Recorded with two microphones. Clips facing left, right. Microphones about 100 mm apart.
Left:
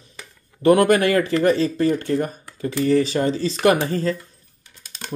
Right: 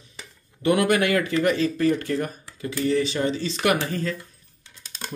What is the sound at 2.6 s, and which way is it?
Speech, 40° left (ahead or behind).